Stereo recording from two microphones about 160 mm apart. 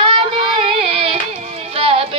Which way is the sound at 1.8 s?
35° right (ahead or behind).